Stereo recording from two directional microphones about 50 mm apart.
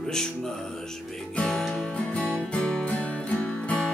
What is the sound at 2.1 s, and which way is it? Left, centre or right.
Music, left.